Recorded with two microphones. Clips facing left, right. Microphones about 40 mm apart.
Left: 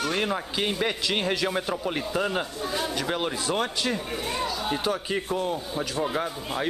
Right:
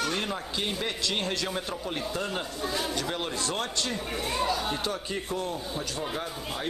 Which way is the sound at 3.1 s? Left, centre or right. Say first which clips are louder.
Left 4 dB; centre.